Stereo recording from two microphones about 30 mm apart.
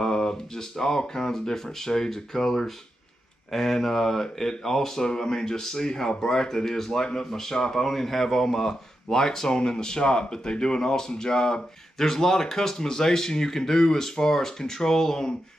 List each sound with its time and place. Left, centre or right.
0.0 s speech: centre